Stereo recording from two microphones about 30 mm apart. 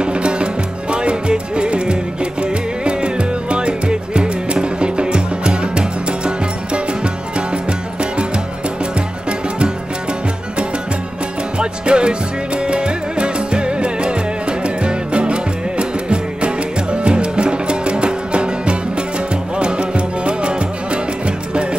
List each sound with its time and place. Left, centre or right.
0.0 s music: right
11.5 s music: right